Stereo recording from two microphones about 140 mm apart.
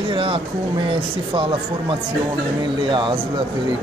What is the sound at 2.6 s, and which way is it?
Speech, 35° right (ahead or behind).